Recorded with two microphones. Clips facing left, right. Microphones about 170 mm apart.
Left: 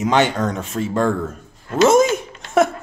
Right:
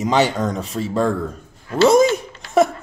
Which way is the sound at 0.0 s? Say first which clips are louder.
Even; centre (ahead or behind).